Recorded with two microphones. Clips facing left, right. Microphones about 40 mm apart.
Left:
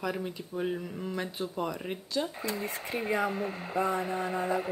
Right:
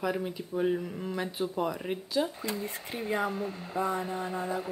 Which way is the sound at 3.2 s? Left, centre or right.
Left.